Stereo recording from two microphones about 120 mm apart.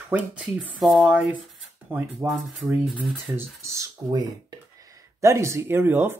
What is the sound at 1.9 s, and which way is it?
Speech, 15° right (ahead or behind).